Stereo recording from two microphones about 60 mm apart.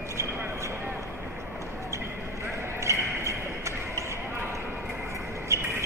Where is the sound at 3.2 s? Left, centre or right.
Right.